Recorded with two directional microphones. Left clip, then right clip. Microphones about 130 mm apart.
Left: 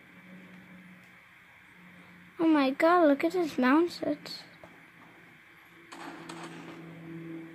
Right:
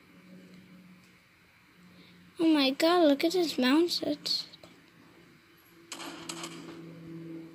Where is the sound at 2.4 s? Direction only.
50° left (ahead or behind).